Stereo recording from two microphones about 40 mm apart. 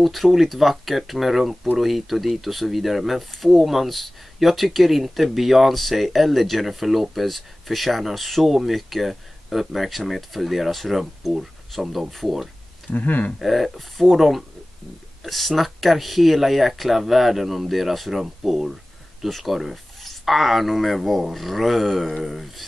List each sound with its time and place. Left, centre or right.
0.0 s speech: centre
12.9 s speech: left
13.4 s speech: centre